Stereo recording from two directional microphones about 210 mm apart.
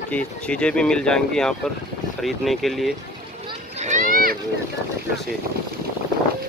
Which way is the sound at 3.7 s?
35° right (ahead or behind).